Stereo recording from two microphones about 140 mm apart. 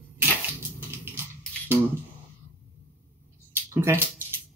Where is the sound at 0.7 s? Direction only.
15° right (ahead or behind).